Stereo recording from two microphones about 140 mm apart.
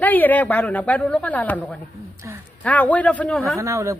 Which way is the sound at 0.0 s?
10° left (ahead or behind).